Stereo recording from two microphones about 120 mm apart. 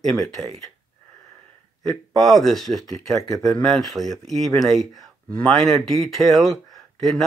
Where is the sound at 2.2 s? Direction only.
Centre (ahead or behind).